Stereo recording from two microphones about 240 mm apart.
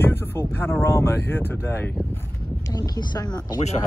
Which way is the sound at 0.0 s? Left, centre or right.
Centre.